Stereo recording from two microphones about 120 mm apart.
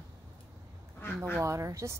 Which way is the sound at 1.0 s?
20° left (ahead or behind).